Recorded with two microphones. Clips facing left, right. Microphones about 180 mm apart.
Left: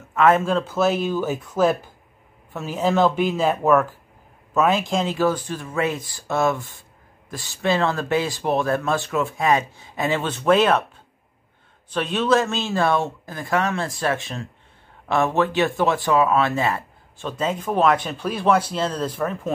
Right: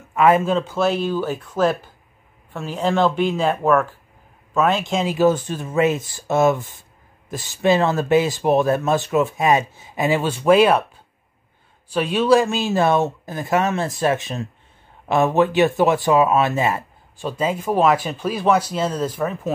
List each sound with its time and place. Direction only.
0.1 s a sound: 10° right (ahead or behind)
0.5 s speech: centre (ahead or behind)
5.0 s speech: 20° right (ahead or behind)
11.9 s speech: 10° right (ahead or behind)